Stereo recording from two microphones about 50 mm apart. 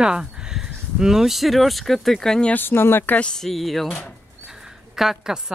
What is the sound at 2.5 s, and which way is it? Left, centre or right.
Speech, left.